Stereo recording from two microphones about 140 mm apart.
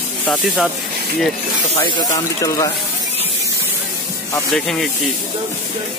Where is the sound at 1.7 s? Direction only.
35° left (ahead or behind).